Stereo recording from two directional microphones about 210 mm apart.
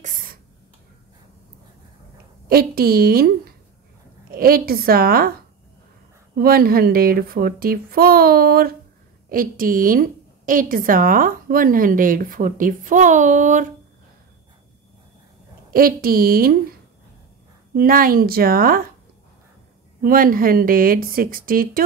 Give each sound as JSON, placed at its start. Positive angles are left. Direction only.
{"t": 0.0, "sound": "a sound", "side_deg": -40}
{"t": 2.5, "sound": "speech", "side_deg": -45}
{"t": 6.4, "sound": "a woman's voice", "side_deg": -45}
{"t": 15.7, "sound": "speech", "side_deg": -45}
{"t": 17.7, "sound": "speech", "side_deg": -45}
{"t": 20.0, "sound": "speech", "side_deg": -40}